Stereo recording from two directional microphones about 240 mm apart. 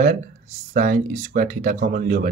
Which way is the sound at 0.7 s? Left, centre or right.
Right.